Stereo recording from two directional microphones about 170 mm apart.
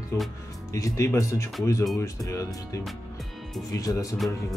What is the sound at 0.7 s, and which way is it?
Speech, 20° left (ahead or behind).